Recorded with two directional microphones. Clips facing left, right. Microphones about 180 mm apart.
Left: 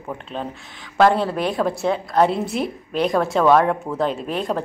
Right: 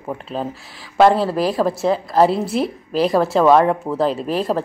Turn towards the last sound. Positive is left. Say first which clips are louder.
# right 4 dB
turn(degrees=0)  # may be behind; listen again after turning